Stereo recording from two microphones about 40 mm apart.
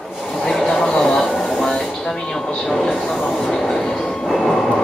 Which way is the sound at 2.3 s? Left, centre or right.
Centre.